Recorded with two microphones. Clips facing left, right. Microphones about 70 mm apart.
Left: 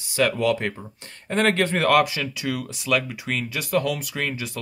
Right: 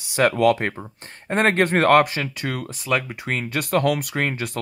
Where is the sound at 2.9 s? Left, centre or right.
Right.